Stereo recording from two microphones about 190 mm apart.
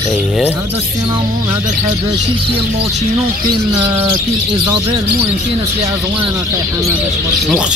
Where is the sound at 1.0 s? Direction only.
20° right (ahead or behind).